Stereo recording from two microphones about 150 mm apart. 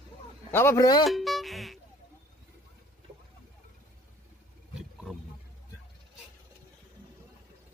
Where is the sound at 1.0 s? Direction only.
Centre (ahead or behind).